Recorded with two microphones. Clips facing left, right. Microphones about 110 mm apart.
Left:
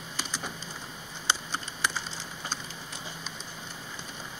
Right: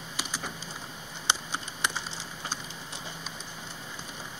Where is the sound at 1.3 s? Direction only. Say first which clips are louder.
Even; 20° right (ahead or behind).